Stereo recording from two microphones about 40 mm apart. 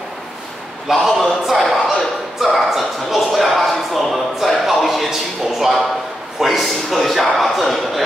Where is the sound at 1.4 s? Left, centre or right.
Centre.